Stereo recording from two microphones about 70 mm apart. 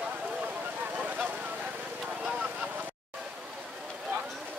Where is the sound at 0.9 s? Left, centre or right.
Right.